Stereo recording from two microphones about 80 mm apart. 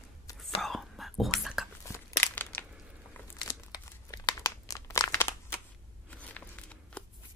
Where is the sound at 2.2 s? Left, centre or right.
Left.